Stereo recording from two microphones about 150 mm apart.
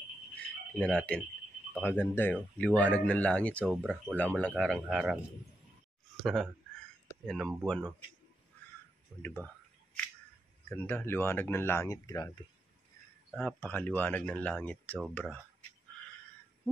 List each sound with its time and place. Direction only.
0.7 s speech: 5° left (ahead or behind)
6.2 s speech: centre (ahead or behind)
9.2 s speech: 10° left (ahead or behind)
10.7 s speech: 15° left (ahead or behind)
13.3 s speech: 5° left (ahead or behind)